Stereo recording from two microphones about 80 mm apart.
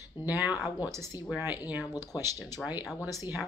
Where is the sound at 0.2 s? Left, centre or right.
Left.